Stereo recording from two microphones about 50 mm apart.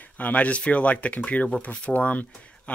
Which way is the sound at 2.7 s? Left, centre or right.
Left.